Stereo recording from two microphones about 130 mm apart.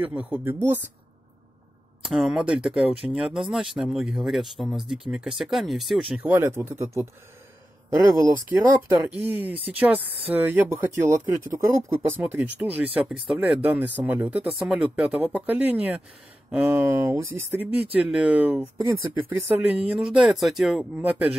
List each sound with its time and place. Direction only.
0.0 s speech: 10° right (ahead or behind)
2.1 s speech: 5° right (ahead or behind)
6.2 s a man's voice: 15° right (ahead or behind)
9.0 s speech: 15° right (ahead or behind)